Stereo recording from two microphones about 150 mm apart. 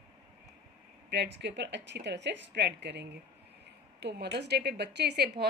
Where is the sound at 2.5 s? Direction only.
90° right.